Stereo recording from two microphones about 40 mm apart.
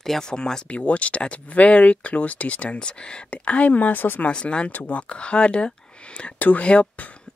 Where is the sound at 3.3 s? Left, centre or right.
Left.